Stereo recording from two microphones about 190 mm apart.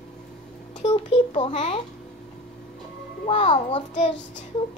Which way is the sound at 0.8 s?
25° left (ahead or behind).